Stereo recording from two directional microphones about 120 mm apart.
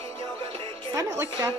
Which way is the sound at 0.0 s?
55° right (ahead or behind).